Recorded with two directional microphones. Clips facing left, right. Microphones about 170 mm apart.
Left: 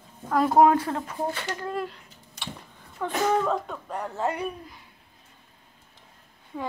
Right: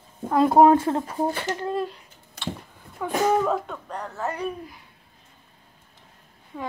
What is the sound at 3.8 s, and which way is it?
Speech, 5° left (ahead or behind).